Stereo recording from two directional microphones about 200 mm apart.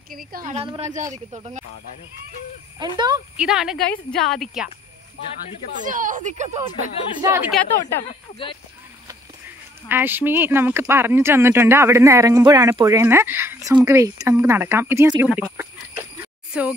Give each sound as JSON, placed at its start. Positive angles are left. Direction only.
{"t": 0.1, "sound": "a woman's voice", "side_deg": -45}
{"t": 0.6, "sound": "speech", "side_deg": -30}
{"t": 2.8, "sound": "speech", "side_deg": -20}
{"t": 3.3, "sound": "a woman's voice", "side_deg": -5}
{"t": 5.8, "sound": "speech", "side_deg": -40}
{"t": 7.2, "sound": "speech", "side_deg": -15}
{"t": 7.8, "sound": "speech", "side_deg": 25}
{"t": 9.8, "sound": "speech", "side_deg": -10}
{"t": 16.5, "sound": "speech", "side_deg": -5}